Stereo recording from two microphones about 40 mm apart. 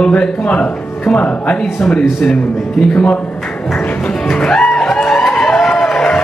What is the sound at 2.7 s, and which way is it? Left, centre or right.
Speech, left.